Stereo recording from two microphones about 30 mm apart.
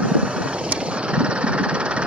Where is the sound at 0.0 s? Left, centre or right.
Right.